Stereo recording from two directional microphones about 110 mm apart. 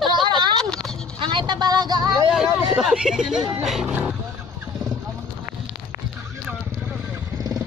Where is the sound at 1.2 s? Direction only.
45° right (ahead or behind).